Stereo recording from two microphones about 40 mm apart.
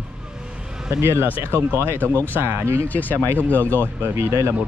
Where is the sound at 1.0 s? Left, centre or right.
Right.